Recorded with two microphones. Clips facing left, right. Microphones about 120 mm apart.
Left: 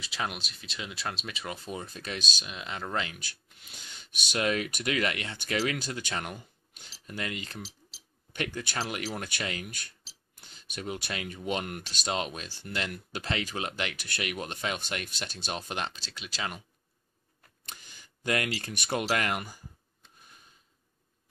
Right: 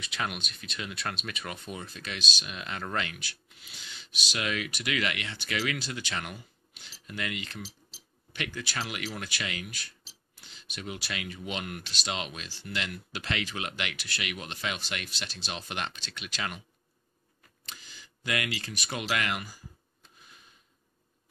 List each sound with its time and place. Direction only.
0.0 s speech: 25° left (ahead or behind)
2.0 s speech: 40° left (ahead or behind)
2.4 s speech: 25° left (ahead or behind)
3.2 s speech: 50° left (ahead or behind)
14.8 s speech: 50° left (ahead or behind)
17.9 s a sound: 40° left (ahead or behind)
18.9 s speech: 40° left (ahead or behind)